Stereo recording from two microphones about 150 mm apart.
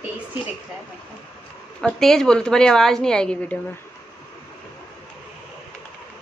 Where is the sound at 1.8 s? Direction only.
5° left (ahead or behind).